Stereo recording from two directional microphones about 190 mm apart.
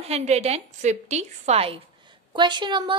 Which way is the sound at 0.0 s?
35° right (ahead or behind).